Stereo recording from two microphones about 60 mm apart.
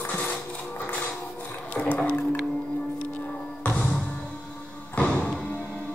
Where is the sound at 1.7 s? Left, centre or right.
Left.